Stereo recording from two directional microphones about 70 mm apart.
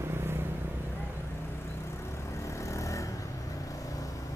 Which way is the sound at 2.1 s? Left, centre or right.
Left.